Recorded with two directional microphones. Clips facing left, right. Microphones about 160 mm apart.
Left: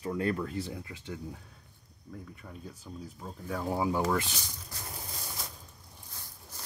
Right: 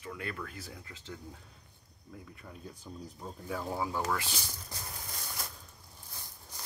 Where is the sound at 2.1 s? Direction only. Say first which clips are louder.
Left 3 dB; centre (ahead or behind).